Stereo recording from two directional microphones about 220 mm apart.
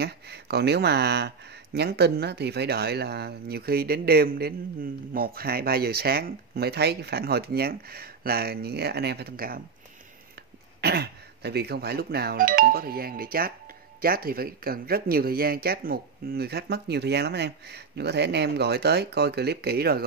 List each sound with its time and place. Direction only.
0.0 s speech: 50° right (ahead or behind)
10.8 s speech: 45° right (ahead or behind)